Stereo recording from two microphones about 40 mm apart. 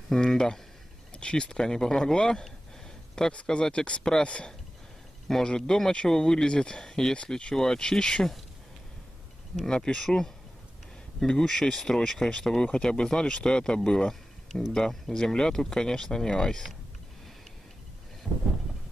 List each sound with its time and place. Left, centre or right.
0.1 s a sound: centre
1.1 s speech: left
5.3 s speech: centre
9.7 s speech: centre
18.3 s speech: centre